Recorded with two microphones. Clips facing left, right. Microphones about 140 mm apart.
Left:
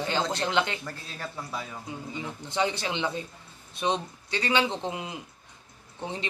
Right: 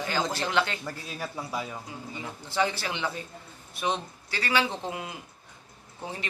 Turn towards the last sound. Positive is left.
turn(degrees=25)  # may be behind; listen again after turning